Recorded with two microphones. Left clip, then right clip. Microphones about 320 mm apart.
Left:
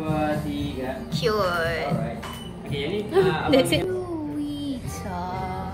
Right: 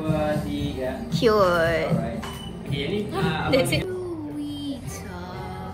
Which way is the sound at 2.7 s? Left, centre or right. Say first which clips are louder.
Left 5 dB; left.